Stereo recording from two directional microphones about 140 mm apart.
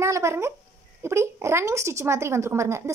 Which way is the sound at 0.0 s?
20° right (ahead or behind).